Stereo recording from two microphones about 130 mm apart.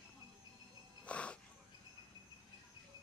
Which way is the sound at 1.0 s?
10° left (ahead or behind).